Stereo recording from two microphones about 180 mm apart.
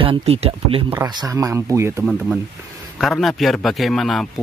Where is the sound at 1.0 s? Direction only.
20° right (ahead or behind).